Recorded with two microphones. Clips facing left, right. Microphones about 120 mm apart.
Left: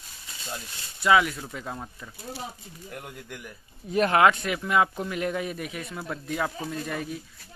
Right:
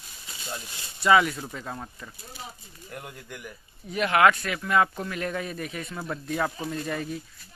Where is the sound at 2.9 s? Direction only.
Centre (ahead or behind).